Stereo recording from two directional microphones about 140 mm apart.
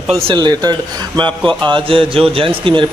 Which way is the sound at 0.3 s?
30° right (ahead or behind).